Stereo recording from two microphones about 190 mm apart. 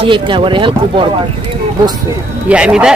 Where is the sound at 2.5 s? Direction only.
5° right (ahead or behind).